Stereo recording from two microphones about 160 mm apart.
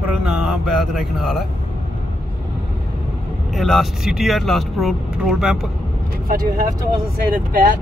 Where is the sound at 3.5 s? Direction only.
Centre (ahead or behind).